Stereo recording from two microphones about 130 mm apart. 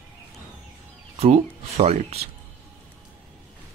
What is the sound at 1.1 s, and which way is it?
Speech, 50° right (ahead or behind).